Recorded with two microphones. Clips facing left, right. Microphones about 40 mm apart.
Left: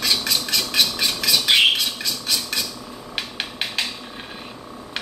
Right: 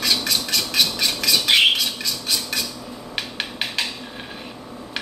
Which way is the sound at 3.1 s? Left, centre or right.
Centre.